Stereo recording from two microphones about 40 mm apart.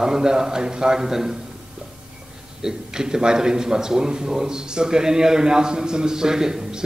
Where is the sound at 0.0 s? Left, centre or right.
Centre.